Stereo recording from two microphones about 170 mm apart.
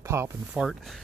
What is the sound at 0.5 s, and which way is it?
Speech, centre (ahead or behind).